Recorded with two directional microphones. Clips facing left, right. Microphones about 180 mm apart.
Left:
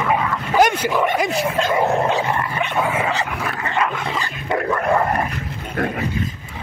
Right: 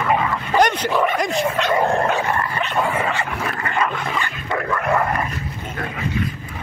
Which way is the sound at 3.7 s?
5° left (ahead or behind).